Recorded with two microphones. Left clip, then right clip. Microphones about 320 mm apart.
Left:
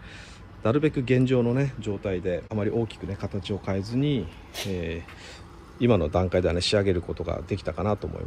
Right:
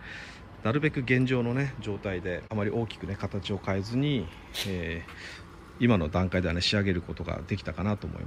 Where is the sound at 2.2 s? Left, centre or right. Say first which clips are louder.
Left 5 dB; right.